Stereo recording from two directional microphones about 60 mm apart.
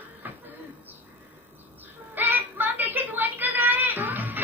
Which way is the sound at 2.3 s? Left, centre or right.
Right.